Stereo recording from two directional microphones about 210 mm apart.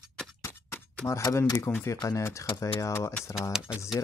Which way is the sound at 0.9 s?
15° left (ahead or behind).